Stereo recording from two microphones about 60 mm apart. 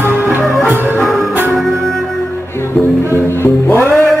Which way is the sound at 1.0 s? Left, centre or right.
Centre.